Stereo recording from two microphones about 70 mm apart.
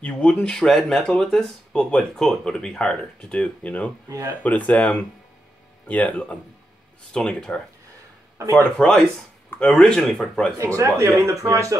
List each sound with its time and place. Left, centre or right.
0.0 s speech: centre
7.1 s speech: centre
8.7 s speech: centre
10.8 s a man's voice: right